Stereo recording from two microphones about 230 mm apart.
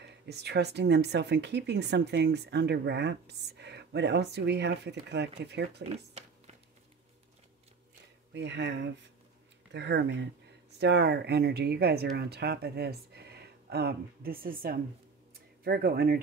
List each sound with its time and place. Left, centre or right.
0.0 s speech: right
5.9 s a sound: right
8.3 s speech: right